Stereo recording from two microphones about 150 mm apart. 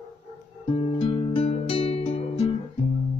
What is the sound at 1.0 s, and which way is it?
Music, 35° left (ahead or behind).